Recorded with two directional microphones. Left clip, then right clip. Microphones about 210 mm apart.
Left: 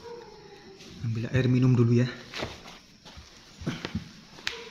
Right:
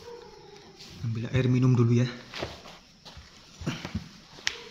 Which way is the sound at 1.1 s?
Centre (ahead or behind).